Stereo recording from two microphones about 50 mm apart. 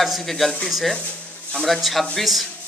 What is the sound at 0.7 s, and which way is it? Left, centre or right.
Speech, centre.